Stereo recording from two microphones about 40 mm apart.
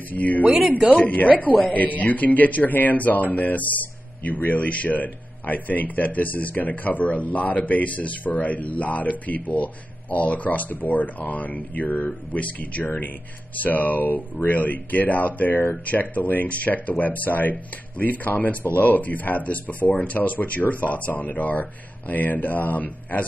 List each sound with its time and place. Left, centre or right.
0.1 s speech: left
0.6 s speech: centre
1.0 s speech: left
12.8 s speech: left